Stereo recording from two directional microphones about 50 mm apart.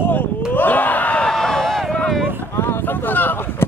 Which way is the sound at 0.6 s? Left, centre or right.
Left.